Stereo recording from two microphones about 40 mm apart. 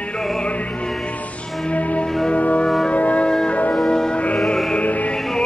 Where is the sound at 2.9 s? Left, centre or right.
Left.